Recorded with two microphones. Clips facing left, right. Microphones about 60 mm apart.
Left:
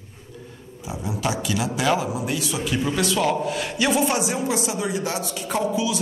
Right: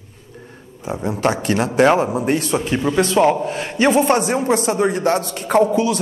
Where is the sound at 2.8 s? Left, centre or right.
Right.